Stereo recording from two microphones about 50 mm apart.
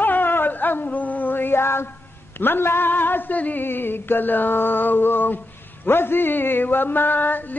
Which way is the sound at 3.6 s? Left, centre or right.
Left.